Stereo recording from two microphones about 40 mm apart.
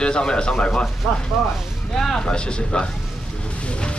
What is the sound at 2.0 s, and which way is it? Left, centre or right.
Speech, centre.